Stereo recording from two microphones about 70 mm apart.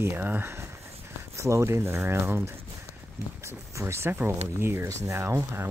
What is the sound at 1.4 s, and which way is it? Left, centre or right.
Speech, right.